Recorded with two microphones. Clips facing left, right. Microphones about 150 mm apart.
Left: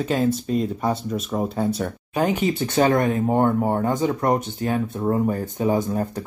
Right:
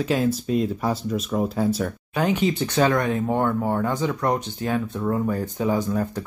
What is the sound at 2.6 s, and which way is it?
Speech, 30° left (ahead or behind).